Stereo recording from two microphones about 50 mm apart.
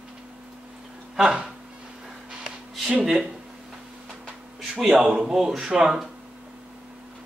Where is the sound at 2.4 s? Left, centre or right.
Centre.